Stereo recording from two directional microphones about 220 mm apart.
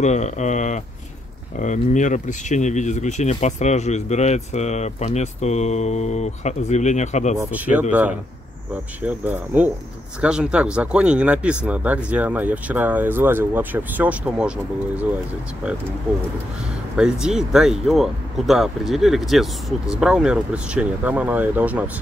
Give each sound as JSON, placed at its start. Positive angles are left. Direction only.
{"t": 0.0, "sound": "speech", "side_deg": 30}
{"t": 7.3, "sound": "speech", "side_deg": -5}
{"t": 9.0, "sound": "speech", "side_deg": -10}
{"t": 16.9, "sound": "speech", "side_deg": -5}